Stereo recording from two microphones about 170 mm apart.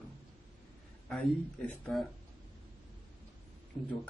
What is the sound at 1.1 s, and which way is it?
Speech, 5° left (ahead or behind).